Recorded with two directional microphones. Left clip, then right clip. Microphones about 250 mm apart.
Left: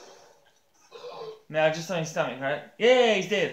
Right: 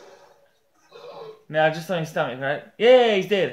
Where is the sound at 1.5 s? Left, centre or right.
Right.